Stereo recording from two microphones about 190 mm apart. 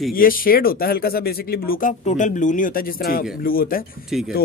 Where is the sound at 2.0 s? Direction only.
40° left (ahead or behind).